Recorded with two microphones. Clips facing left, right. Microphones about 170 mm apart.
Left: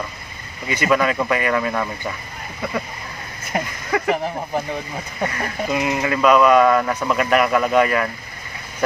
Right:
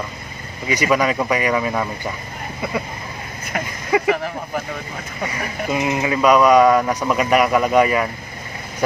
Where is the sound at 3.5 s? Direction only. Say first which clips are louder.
Right 2 dB; 25° left (ahead or behind).